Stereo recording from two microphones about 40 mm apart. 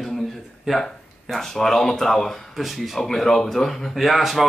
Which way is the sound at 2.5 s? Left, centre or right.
Centre.